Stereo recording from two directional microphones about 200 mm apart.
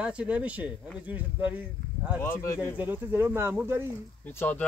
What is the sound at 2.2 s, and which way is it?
Speech, 15° left (ahead or behind).